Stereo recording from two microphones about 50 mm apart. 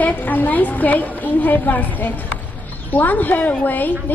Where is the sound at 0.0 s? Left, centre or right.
Left.